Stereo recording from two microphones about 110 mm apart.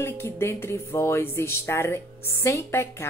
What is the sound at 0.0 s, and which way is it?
Speech, 25° left (ahead or behind).